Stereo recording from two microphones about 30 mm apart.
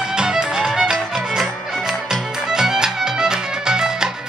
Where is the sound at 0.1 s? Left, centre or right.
Right.